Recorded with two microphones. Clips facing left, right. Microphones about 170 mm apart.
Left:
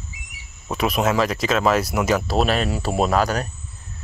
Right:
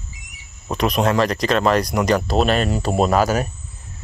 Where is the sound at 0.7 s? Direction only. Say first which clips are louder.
Right 2 dB; 5° left (ahead or behind).